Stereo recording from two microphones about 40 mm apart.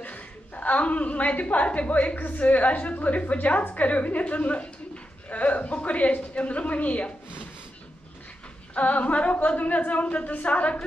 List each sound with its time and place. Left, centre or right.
0.0 s a woman's voice: left
8.7 s a woman's voice: left